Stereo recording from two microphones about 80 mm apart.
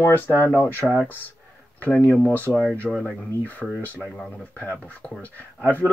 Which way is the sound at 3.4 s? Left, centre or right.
Left.